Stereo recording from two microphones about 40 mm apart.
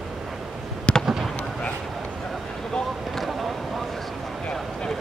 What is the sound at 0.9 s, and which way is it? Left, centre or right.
Fireworks, left.